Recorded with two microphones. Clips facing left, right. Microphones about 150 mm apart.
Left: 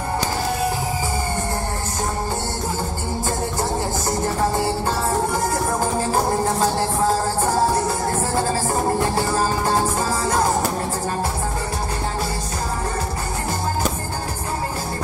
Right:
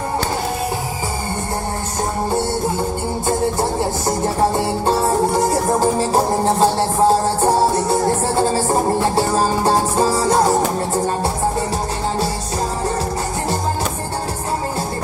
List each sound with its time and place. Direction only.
5.9 s music: 30° right (ahead or behind)